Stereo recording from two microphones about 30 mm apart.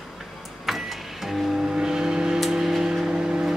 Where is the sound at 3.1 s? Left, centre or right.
Right.